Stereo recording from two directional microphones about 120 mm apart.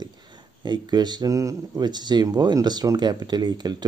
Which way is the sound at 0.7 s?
35° right (ahead or behind).